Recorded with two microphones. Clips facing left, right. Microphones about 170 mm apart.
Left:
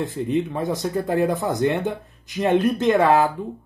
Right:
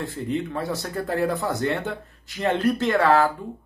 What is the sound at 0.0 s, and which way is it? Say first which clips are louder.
Speech: left 4 dB; 20° left (ahead or behind).